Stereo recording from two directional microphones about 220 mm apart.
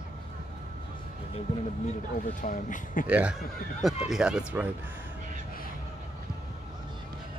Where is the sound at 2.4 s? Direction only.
35° left (ahead or behind).